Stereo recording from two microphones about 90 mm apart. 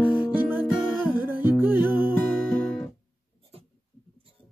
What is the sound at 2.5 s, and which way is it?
Music, 10° left (ahead or behind).